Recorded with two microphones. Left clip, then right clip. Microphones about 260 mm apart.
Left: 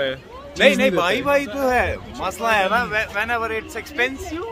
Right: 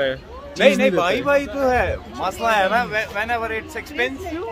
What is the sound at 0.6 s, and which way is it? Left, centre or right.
Speech, centre.